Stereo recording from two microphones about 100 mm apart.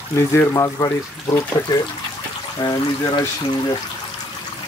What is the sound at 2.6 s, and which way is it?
Speech, 40° left (ahead or behind).